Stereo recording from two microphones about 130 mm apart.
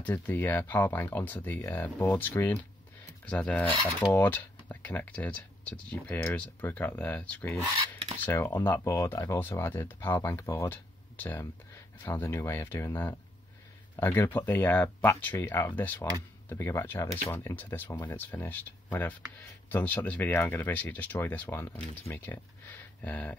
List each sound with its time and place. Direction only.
0.0 s speech: 15° left (ahead or behind)